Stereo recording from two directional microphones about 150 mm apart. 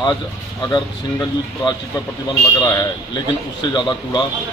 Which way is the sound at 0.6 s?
25° left (ahead or behind).